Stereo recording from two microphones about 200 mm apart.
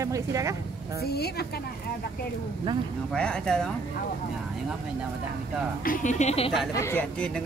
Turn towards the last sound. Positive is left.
turn(degrees=5)  # may be behind; listen again after turning